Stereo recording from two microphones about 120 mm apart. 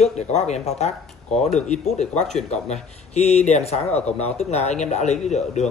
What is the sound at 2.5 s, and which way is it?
A man's voice, 65° left (ahead or behind).